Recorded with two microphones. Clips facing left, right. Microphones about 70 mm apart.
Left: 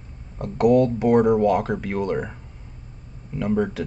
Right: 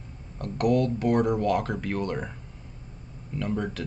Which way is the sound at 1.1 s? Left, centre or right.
Centre.